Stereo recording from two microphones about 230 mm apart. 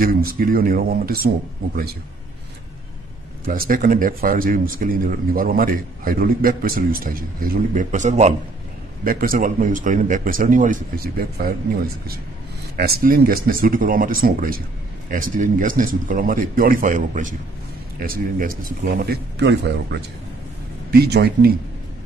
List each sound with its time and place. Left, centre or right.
0.0 s speech: right
3.4 s speech: right